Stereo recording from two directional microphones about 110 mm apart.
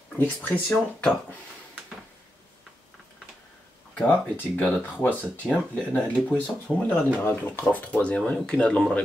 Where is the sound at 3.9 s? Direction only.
15° left (ahead or behind).